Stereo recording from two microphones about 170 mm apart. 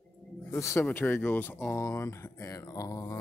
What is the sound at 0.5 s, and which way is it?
Speech, 15° left (ahead or behind).